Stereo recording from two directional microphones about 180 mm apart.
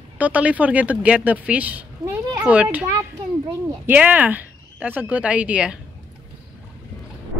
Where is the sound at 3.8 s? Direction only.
10° right (ahead or behind).